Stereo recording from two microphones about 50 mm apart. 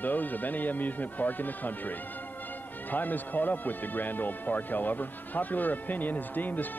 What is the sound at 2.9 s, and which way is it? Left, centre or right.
Speech, left.